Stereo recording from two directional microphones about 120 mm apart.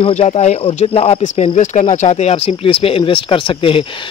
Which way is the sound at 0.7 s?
55° left (ahead or behind).